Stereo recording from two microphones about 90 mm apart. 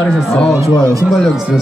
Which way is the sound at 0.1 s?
Centre (ahead or behind).